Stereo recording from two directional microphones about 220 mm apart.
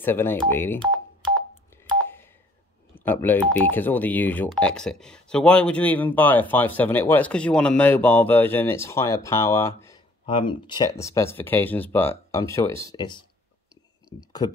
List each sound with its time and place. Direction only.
0.0 s speech: 10° left (ahead or behind)
2.9 s speech: 10° left (ahead or behind)
14.4 s speech: 15° left (ahead or behind)